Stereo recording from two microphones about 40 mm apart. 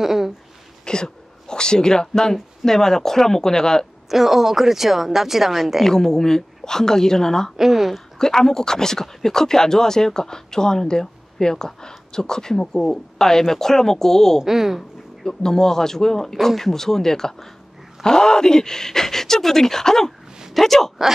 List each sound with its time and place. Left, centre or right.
0.0 s a sound: centre
0.8 s speech: centre
4.1 s speech: centre
5.9 s speech: centre
7.5 s a woman's voice: centre
8.2 s speech: centre
14.4 s speech: centre
15.2 s speech: centre